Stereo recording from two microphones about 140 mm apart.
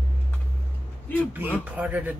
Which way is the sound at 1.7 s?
10° right (ahead or behind).